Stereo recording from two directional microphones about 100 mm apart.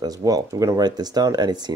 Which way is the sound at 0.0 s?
35° right (ahead or behind).